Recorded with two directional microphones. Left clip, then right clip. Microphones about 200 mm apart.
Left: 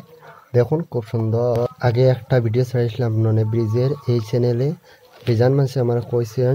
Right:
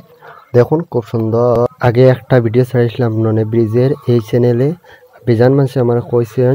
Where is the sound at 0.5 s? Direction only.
25° right (ahead or behind).